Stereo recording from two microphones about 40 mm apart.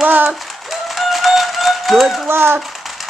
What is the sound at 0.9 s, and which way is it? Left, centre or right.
Music, centre.